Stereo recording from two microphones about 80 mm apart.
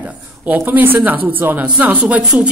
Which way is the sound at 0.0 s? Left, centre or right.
Right.